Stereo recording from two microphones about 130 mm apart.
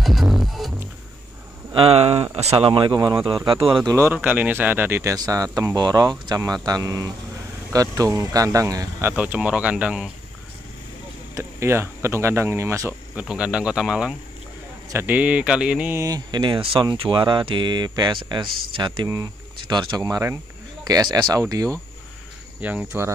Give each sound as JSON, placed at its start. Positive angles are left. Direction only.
{"t": 0.0, "sound": "music", "side_deg": 0}
{"t": 1.7, "sound": "a man's voice", "side_deg": -45}
{"t": 3.9, "sound": "speech", "side_deg": -15}
{"t": 9.1, "sound": "speech", "side_deg": -10}
{"t": 11.3, "sound": "speech", "side_deg": -20}
{"t": 13.1, "sound": "speech", "side_deg": -10}
{"t": 16.0, "sound": "speech", "side_deg": -30}
{"t": 22.6, "sound": "speech", "side_deg": -10}